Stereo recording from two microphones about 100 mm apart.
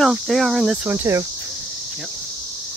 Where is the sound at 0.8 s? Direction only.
25° right (ahead or behind).